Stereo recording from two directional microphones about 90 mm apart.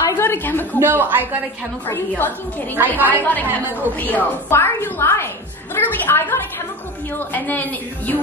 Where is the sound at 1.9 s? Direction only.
20° left (ahead or behind).